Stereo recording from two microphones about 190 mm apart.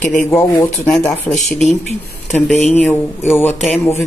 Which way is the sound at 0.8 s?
5° left (ahead or behind).